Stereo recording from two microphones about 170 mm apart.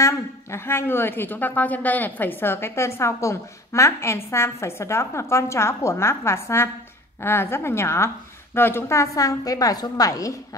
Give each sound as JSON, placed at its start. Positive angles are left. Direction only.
{"t": 0.0, "sound": "a woman's voice", "side_deg": 15}